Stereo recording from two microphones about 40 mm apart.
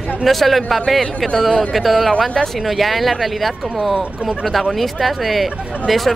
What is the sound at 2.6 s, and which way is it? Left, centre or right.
Speech, centre.